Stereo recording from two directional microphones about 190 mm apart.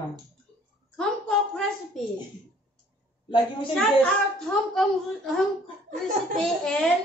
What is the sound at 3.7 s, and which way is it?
A woman's voice, centre (ahead or behind).